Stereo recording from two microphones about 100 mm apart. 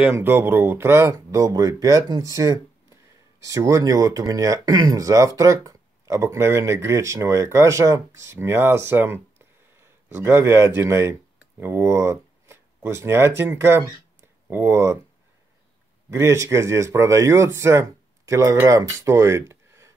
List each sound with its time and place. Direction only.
0.1 s speech: 25° right (ahead or behind)
2.3 s a sound: 35° right (ahead or behind)
3.4 s speech: 30° right (ahead or behind)
16.1 s speech: 30° right (ahead or behind)